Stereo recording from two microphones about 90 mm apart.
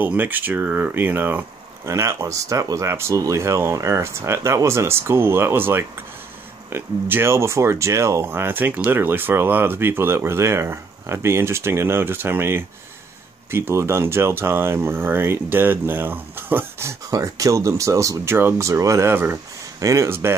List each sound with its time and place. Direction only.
0.0 s speech: 20° right (ahead or behind)
1.9 s speech: 35° right (ahead or behind)
8.3 s speech: 25° right (ahead or behind)
17.1 s speech: 40° right (ahead or behind)
19.8 s speech: 35° right (ahead or behind)